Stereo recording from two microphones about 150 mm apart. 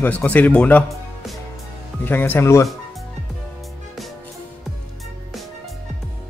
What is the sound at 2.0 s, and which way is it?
Speech, 15° left (ahead or behind).